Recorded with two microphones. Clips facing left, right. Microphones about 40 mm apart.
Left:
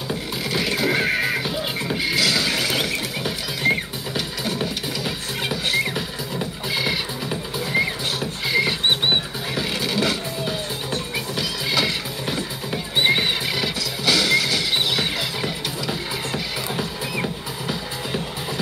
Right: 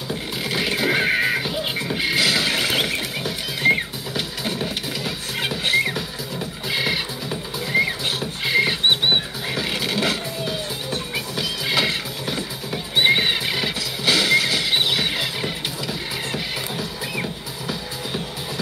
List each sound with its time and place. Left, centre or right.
0.5 s music: centre
3.6 s music: right
5.4 s music: centre
8.5 s rodents: centre
9.6 s music: centre
12.3 s music: centre
12.9 s music: centre